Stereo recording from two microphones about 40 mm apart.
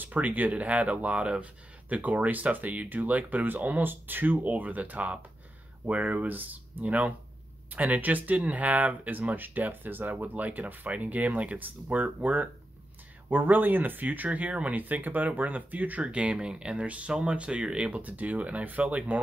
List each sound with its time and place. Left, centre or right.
0.0 s speech: right
1.4 s speech: right
4.5 s speech: right
6.2 s speech: right
6.8 s speech: right
13.3 s speech: right
17.1 s speech: centre
18.1 s speech: right